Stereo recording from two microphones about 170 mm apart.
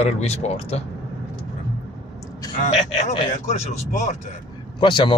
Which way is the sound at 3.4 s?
40° left (ahead or behind).